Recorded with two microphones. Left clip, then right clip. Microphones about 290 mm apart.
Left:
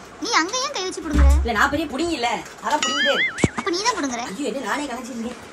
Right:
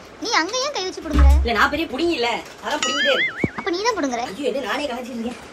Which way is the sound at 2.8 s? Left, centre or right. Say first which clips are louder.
Right 3 dB; centre.